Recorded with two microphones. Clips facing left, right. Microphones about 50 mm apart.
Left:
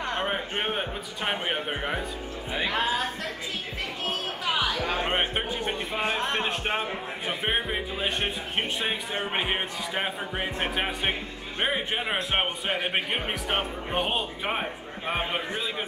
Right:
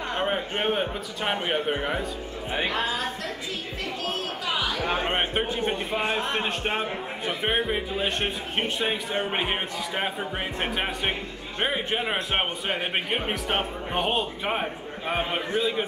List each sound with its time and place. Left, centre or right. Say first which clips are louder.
0.2 s a man's voice: right 2 dB; centre
4.0 s music: left 1 dB; left
5.1 s a man's voice: right 1 dB; centre
5.9 s a man's voice: right 2 dB; centre
6.4 s a man's voice: right 1 dB; centre